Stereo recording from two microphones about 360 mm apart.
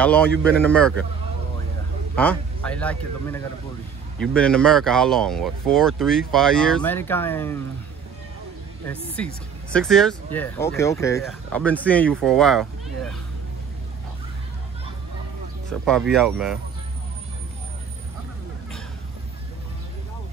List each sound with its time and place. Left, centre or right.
0.0 s speech: centre
2.1 s speech: centre
8.8 s speech: centre
15.8 s speech: centre